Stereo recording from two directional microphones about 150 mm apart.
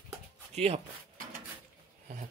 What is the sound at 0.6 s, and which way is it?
Speech, 45° right (ahead or behind).